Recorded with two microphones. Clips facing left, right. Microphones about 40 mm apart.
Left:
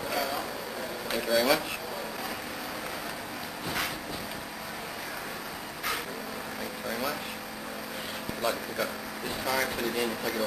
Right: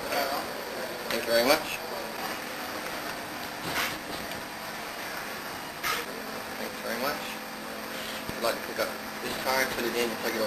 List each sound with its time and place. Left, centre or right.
0.1 s vehicle: centre
1.1 s speech: centre
6.9 s vehicle: centre
8.4 s speech: centre